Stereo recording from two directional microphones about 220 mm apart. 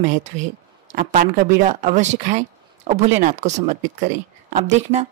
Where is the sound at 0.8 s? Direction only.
40° right (ahead or behind).